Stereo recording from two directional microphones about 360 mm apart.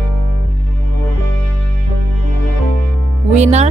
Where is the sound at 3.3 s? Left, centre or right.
Centre.